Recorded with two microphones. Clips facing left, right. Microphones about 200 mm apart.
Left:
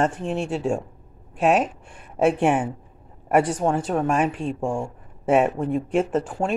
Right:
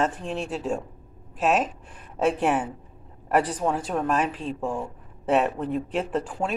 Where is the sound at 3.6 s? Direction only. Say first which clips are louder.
Left 3 dB; 25° left (ahead or behind).